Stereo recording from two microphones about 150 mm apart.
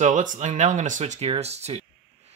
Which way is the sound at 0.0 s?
55° right (ahead or behind).